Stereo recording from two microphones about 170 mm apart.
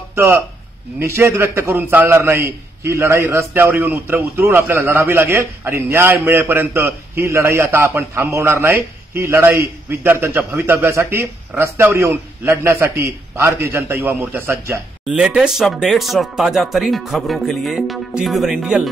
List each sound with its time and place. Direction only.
0.1 s a man's voice: 15° right (ahead or behind)